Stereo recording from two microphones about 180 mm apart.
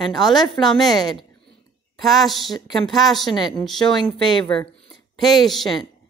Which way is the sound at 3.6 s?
Centre (ahead or behind).